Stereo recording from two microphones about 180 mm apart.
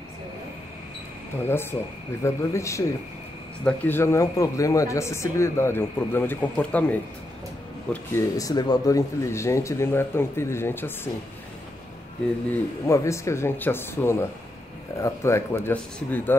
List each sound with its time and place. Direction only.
1.4 s a man's voice: 10° left (ahead or behind)
12.8 s a man's voice: 15° left (ahead or behind)